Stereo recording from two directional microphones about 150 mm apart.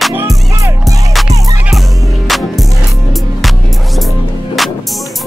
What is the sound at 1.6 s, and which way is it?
Music, centre (ahead or behind).